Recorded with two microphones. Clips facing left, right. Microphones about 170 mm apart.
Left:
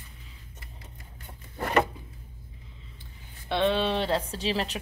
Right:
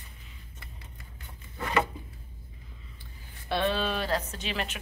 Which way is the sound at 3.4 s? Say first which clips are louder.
Left 3 dB; 20° left (ahead or behind).